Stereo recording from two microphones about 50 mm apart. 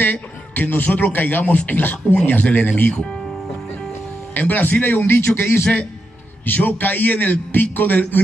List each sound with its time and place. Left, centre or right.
0.0 s a man's voice: left
4.3 s a man's voice: left